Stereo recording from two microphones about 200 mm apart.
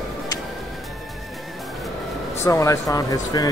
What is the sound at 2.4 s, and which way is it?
Speech, 15° left (ahead or behind).